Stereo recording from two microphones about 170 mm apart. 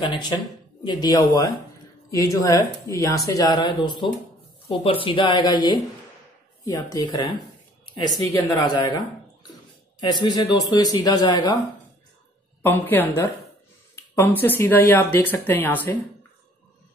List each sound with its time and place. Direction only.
0.0 s speech: 25° left (ahead or behind)
9.9 s speech: 25° left (ahead or behind)
12.6 s speech: 10° left (ahead or behind)